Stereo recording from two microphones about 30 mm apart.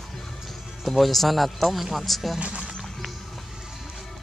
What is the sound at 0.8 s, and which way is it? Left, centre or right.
A man's voice, centre.